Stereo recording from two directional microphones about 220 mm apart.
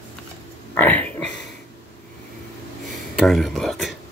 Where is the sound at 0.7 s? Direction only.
5° left (ahead or behind).